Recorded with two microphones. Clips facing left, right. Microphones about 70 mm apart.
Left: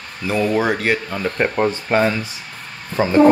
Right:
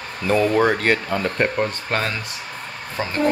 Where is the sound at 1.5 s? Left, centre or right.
Centre.